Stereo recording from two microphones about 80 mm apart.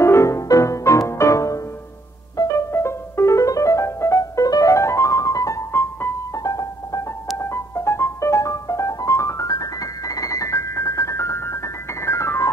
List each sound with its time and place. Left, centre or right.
0.0 s music: left
2.7 s music: left
5.7 s music: left
6.3 s music: left
7.3 s music: left
9.5 s music: left